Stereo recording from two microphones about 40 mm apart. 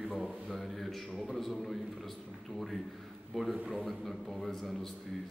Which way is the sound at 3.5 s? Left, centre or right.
Right.